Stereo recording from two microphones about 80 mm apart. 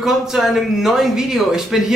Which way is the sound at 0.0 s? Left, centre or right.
Centre.